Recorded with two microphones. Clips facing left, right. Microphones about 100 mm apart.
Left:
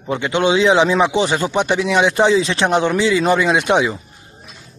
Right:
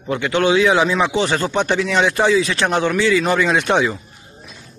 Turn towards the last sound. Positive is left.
turn(degrees=15)  # may be behind; listen again after turning